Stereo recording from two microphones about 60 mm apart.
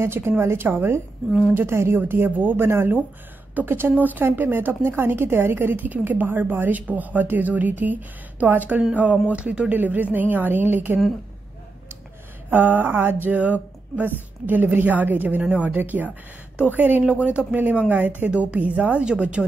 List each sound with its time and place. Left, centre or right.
0.0 s a woman's voice: right
2.6 s a woman's voice: right
12.4 s a woman's voice: right